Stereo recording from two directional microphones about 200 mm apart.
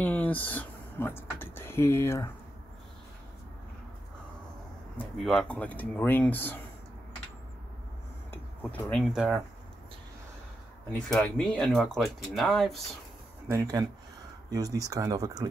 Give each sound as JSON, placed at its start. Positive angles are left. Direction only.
{"t": 0.0, "sound": "speech", "side_deg": 10}
{"t": 4.9, "sound": "speech", "side_deg": 0}
{"t": 8.3, "sound": "speech", "side_deg": 10}
{"t": 11.1, "sound": "speech", "side_deg": 5}
{"t": 13.5, "sound": "speech", "side_deg": -15}